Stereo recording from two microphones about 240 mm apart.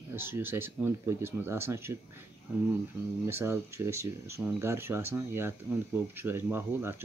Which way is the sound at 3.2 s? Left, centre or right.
Centre.